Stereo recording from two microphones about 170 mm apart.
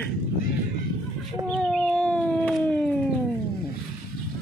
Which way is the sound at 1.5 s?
5° left (ahead or behind).